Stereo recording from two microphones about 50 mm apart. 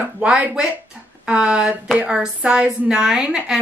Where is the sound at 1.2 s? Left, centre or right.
Right.